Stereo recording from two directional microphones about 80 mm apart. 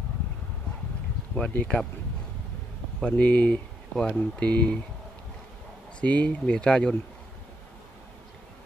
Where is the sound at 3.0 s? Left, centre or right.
Centre.